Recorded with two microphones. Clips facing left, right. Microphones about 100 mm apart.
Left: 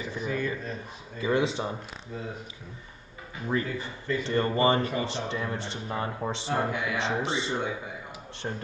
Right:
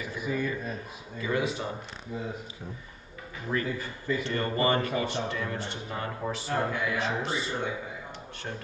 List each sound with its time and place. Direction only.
0.0 s a sound: 10° right (ahead or behind)
1.2 s speech: 25° left (ahead or behind)
3.4 s speech: 25° left (ahead or behind)